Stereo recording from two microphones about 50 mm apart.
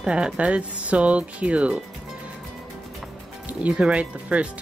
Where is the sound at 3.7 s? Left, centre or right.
Right.